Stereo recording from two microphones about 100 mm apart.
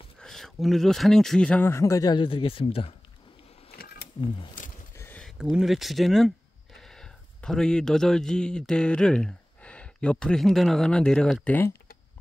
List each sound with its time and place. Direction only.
0.2 s speech: 5° left (ahead or behind)
1.7 s a man's voice: 30° left (ahead or behind)
2.1 s speech: 65° left (ahead or behind)
5.4 s speech: 5° right (ahead or behind); by 11.6 s 10° left (ahead or behind)